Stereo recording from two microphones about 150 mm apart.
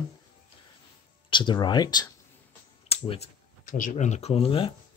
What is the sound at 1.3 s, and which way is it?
Speech, 30° left (ahead or behind).